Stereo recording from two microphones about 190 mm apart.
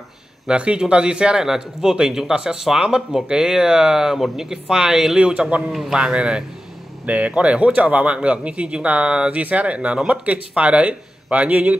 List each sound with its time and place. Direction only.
0.5 s speech: 5° right (ahead or behind)